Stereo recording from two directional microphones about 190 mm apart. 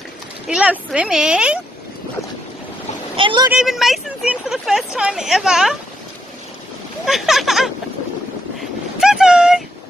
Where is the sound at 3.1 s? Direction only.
25° right (ahead or behind).